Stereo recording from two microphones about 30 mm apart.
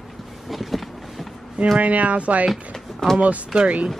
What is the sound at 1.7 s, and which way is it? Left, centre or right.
Speech, right.